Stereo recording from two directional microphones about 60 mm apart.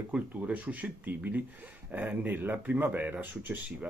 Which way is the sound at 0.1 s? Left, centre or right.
Right.